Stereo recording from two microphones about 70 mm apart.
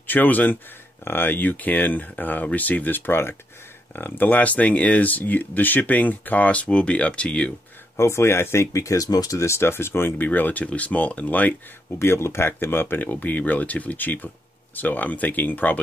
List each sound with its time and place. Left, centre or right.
0.0 s speech: left
8.0 s speech: left
9.4 s speech: left
11.9 s speech: left